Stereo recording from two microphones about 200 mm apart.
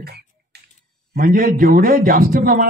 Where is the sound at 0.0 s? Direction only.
55° right (ahead or behind).